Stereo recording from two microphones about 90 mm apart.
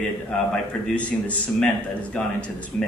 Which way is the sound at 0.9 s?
15° left (ahead or behind).